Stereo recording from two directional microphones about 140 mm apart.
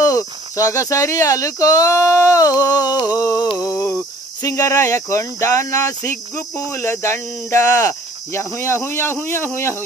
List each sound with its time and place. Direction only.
0.0 s speech: 25° left (ahead or behind)